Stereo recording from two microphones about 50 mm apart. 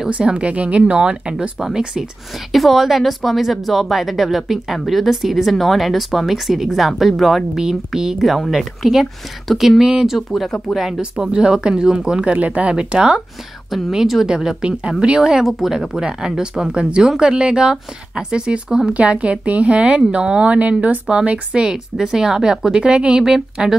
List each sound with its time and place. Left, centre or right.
0.1 s speech: right
2.5 s a woman's voice: centre
10.1 s speech: centre
11.0 s a woman's voice: centre
12.3 s speech: right
13.7 s a woman's voice: centre